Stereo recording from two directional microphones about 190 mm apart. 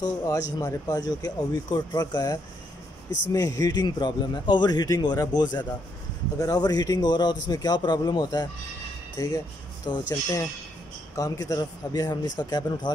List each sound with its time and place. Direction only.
0.0 s a man's voice: 20° left (ahead or behind)
9.8 s a man's voice: 20° left (ahead or behind)